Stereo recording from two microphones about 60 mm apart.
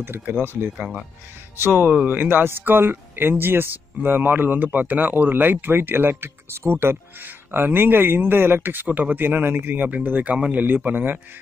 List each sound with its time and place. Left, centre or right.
0.0 s speech: right
1.6 s a man's voice: right